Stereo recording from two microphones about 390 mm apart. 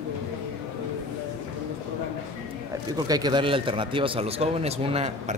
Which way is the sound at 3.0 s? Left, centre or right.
Centre.